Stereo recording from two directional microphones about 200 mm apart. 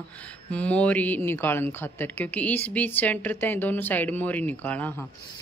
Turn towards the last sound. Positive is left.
turn(degrees=10)  # may be behind; listen again after turning